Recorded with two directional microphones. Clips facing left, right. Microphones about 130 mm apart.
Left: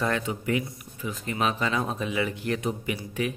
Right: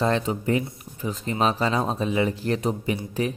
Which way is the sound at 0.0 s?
30° right (ahead or behind).